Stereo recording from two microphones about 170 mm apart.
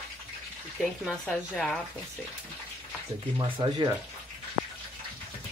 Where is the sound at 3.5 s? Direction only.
30° right (ahead or behind).